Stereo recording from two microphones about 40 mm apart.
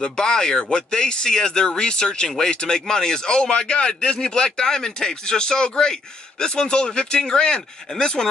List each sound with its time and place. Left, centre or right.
0.0 s speech: centre